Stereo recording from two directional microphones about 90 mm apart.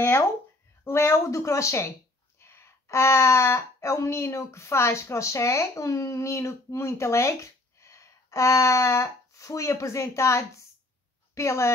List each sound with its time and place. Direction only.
0.8 s speech: 30° left (ahead or behind)